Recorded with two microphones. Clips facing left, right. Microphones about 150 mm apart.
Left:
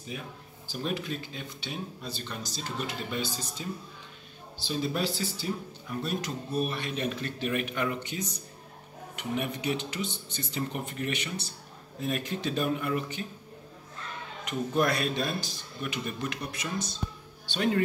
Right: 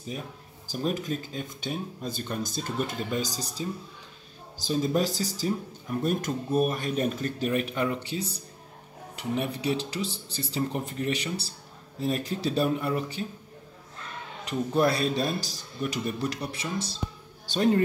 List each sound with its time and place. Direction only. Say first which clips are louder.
0.1 s speech: right 2 dB; 35° right (ahead or behind)
14.4 s speech: right 3 dB; 30° right (ahead or behind)